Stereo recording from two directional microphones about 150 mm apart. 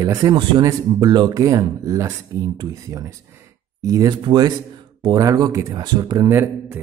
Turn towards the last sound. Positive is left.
turn(degrees=-15)  # may be behind; listen again after turning